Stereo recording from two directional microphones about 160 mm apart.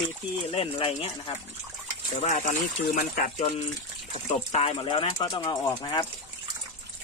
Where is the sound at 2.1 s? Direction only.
45° left (ahead or behind).